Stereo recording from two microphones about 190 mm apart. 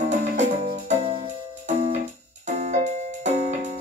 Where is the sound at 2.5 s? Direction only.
35° right (ahead or behind).